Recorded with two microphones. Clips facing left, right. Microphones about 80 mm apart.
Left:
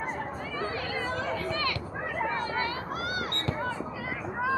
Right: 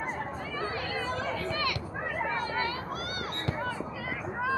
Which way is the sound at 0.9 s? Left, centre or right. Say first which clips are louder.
Left 2 dB; left.